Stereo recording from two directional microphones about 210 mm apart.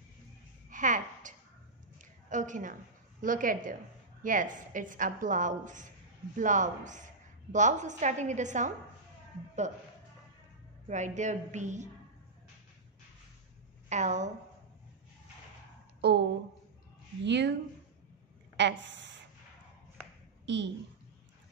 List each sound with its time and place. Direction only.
0.7 s a sound: 40° right (ahead or behind)
4.2 s a woman's voice: 40° right (ahead or behind)
10.9 s a woman's voice: 35° right (ahead or behind)
13.8 s a woman's voice: 35° right (ahead or behind)
16.0 s speech: 50° right (ahead or behind)
18.6 s a woman's voice: 60° right (ahead or behind)
20.4 s a woman's voice: 55° right (ahead or behind)